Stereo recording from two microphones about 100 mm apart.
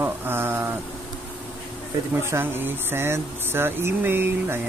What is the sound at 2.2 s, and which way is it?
Speech, 25° right (ahead or behind).